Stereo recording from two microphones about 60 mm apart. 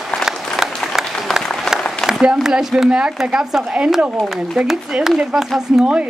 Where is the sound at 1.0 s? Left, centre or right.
Centre.